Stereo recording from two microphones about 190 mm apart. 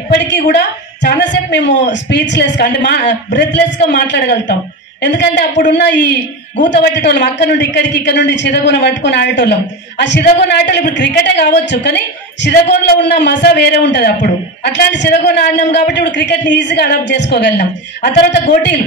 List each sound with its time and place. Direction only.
0.1 s a man's voice: 65° left (ahead or behind)